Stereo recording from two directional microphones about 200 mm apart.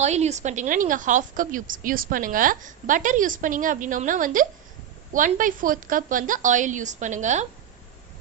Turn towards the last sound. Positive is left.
turn(degrees=-35)  # may be behind; listen again after turning